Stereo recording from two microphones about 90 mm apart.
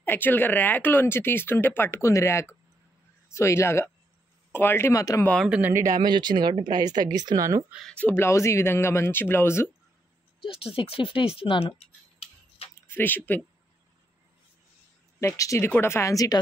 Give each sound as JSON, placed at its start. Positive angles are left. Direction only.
{"t": 0.0, "sound": "speech", "side_deg": 20}
{"t": 5.9, "sound": "speech", "side_deg": -55}
{"t": 7.8, "sound": "speech", "side_deg": 10}
{"t": 8.1, "sound": "speech", "side_deg": 30}
{"t": 10.4, "sound": "speech", "side_deg": 90}
{"t": 12.6, "sound": "a sound", "side_deg": 90}
{"t": 12.9, "sound": "speech", "side_deg": 20}
{"t": 15.1, "sound": "speech", "side_deg": 35}